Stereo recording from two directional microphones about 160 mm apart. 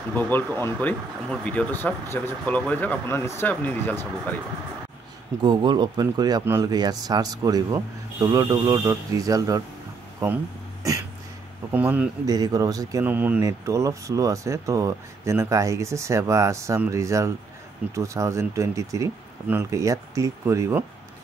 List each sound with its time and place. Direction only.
0.1 s speech: 10° left (ahead or behind)
5.4 s speech: 30° right (ahead or behind)
6.4 s speech: 15° right (ahead or behind)
6.7 s speech: 25° right (ahead or behind); by 12.1 s 10° right (ahead or behind)
12.3 s speech: 25° right (ahead or behind)
13.0 s speech: 10° right (ahead or behind)